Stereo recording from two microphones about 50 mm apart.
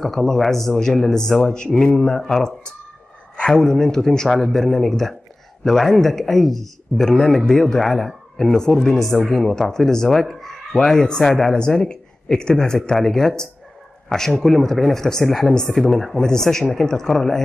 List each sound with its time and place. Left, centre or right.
0.0 s speech: centre